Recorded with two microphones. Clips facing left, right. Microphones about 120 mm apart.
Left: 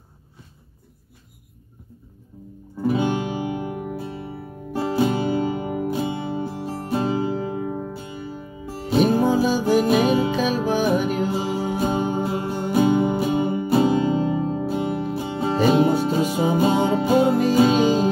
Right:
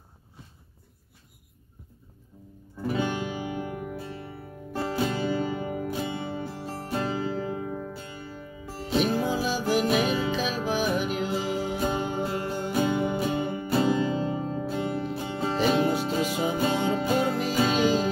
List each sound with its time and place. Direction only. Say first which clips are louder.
2.9 s music: left 6 dB; 20° left (ahead or behind)
7.6 s music: left 5 dB; 35° left (ahead or behind)
7.9 s music: left 6 dB; 15° left (ahead or behind)
8.8 s music: left 7 dB; 40° left (ahead or behind)
11.5 s music: left 5 dB; 35° left (ahead or behind)
12.3 s music: left 5 dB; 20° left (ahead or behind)
15.9 s music: left 6 dB; 40° left (ahead or behind)
17.0 s music: left 7 dB; 20° left (ahead or behind)
17.6 s music: left 4 dB; 30° left (ahead or behind)